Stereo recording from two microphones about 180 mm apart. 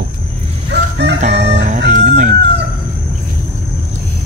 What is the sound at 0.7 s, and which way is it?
Chicken, 70° right (ahead or behind).